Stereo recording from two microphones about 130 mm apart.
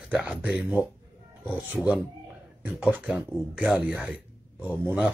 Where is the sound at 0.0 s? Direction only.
10° right (ahead or behind).